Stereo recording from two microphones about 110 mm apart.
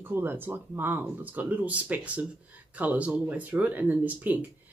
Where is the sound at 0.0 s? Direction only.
20° right (ahead or behind).